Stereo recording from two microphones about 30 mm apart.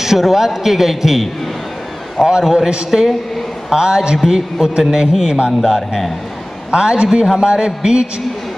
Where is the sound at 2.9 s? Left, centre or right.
Centre.